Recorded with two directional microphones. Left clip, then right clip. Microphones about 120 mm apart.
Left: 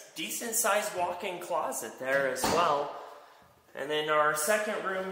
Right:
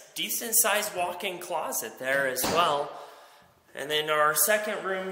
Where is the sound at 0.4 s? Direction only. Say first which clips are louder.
Right 1 dB; 25° right (ahead or behind).